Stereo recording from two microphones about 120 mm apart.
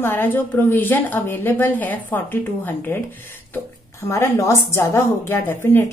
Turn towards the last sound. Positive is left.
turn(degrees=20)  # may be behind; listen again after turning